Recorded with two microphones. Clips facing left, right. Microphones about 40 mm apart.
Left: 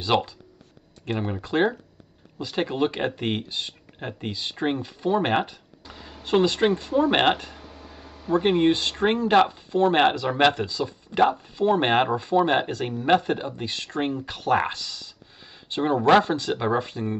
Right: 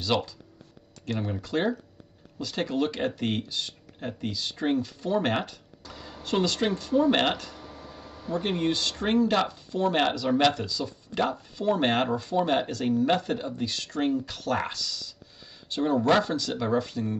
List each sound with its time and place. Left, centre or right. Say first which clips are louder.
0.0 s speech: left 4 dB; left